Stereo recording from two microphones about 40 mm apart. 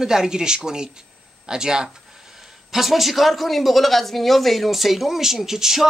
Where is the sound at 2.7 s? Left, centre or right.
Centre.